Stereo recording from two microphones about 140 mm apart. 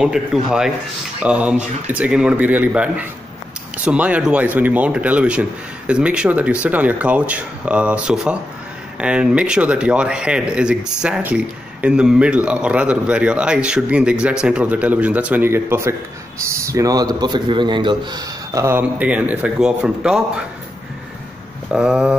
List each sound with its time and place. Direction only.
0.0 s a man's voice: 5° right (ahead or behind); by 18.2 s 35° right (ahead or behind)
18.5 s speech: 20° right (ahead or behind)
21.7 s speech: 10° right (ahead or behind)